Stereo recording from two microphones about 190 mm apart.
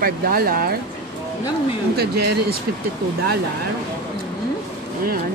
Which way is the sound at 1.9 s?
55° right (ahead or behind).